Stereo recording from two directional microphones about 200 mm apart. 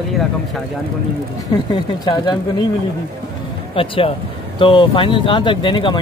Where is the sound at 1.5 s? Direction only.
20° left (ahead or behind).